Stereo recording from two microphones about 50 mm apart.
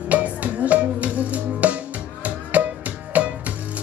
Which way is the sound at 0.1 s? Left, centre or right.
Right.